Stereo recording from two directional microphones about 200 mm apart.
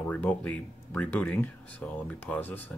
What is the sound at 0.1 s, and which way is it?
Speech, 10° left (ahead or behind).